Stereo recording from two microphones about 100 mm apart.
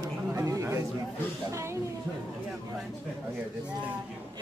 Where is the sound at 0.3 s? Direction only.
30° right (ahead or behind).